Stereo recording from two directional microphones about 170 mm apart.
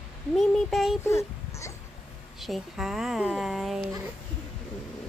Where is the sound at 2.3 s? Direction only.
Centre (ahead or behind).